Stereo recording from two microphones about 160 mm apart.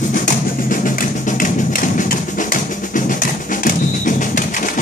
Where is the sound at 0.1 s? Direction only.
55° left (ahead or behind).